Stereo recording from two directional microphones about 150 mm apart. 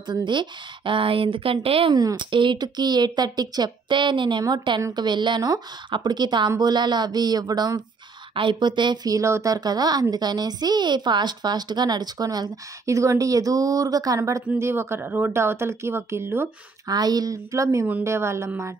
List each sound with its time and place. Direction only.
0.1 s a woman's voice: 30° right (ahead or behind)
2.0 s speech: 30° right (ahead or behind)